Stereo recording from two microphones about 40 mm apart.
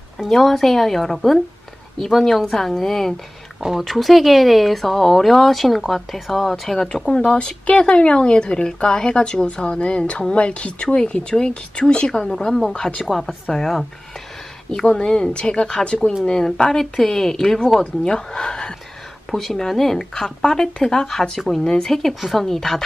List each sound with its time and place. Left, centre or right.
0.3 s speech: centre
7.3 s speech: left
12.3 s speech: centre
14.9 s speech: left
16.3 s speech: centre